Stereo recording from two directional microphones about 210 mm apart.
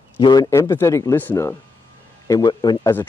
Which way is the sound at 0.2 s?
20° left (ahead or behind).